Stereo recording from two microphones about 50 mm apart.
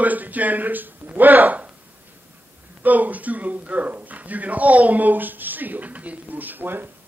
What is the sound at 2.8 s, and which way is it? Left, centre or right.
Speech, right.